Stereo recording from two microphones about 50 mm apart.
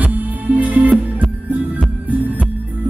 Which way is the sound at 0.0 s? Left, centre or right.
Right.